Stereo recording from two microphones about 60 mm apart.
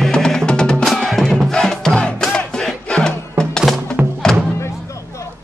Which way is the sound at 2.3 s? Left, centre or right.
Centre.